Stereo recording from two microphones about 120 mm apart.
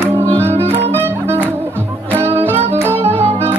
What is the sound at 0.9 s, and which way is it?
Music, 20° right (ahead or behind).